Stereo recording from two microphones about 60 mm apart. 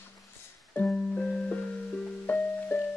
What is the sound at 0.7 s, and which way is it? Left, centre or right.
Music, centre.